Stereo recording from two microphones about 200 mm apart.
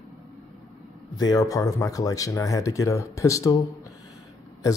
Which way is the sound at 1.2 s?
20° left (ahead or behind).